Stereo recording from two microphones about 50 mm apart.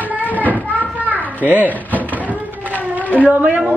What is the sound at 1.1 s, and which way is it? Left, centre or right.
Children playing, left.